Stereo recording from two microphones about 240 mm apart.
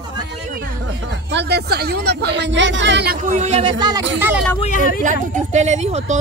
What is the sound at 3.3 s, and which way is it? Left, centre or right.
Speech, right.